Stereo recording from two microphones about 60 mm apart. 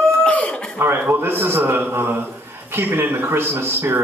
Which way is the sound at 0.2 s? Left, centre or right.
Centre.